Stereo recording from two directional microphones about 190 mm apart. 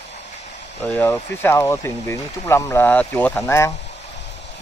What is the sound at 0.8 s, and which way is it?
Speech, 10° left (ahead or behind).